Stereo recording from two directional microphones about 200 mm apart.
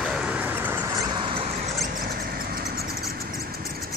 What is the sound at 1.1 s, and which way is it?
Vehicle, 25° right (ahead or behind).